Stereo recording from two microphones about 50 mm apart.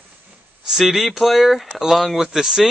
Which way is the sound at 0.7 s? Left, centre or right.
Centre.